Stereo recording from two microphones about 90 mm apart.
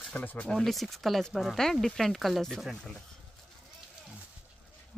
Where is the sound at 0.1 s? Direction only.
20° left (ahead or behind).